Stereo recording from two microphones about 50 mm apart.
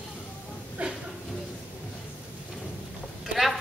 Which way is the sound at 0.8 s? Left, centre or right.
Right.